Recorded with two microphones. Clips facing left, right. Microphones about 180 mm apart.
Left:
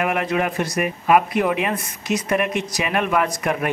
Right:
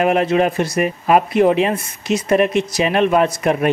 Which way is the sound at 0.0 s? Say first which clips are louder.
Right 6 dB; 30° right (ahead or behind).